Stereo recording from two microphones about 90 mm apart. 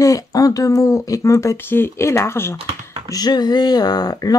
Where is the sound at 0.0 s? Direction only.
40° left (ahead or behind).